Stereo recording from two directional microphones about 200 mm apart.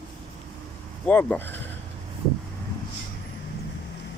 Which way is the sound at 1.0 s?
10° left (ahead or behind).